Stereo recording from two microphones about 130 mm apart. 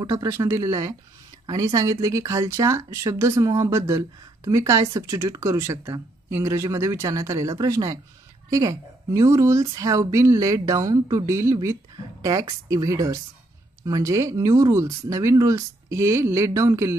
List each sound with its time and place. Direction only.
0.0 s speech: 30° right (ahead or behind)